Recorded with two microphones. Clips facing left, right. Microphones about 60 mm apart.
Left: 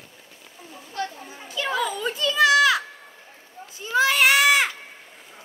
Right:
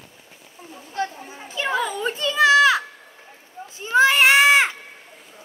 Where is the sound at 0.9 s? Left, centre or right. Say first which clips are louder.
Right 3 dB; right.